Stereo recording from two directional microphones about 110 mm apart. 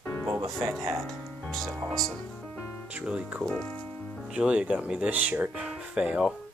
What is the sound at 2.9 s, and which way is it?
Speech, 10° right (ahead or behind).